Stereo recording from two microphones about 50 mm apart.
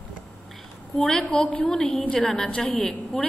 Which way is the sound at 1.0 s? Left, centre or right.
Centre.